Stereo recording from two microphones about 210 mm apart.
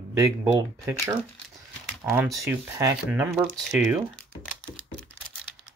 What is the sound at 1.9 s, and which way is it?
Speech, 10° right (ahead or behind).